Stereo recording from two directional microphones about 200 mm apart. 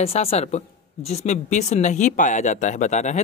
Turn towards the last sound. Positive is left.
turn(degrees=35)  # may be behind; listen again after turning